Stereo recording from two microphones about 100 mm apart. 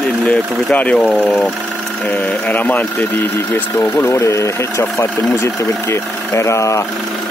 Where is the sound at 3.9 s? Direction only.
30° left (ahead or behind).